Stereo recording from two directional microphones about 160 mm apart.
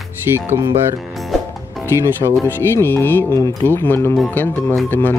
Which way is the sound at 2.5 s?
15° left (ahead or behind).